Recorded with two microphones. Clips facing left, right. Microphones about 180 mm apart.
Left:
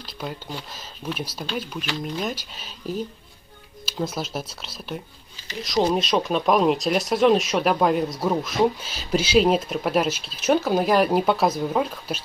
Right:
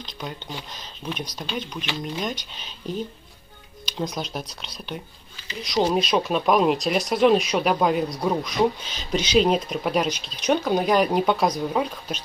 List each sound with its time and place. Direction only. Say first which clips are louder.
0.0 s speech: left 2 dB; 5° left (ahead or behind)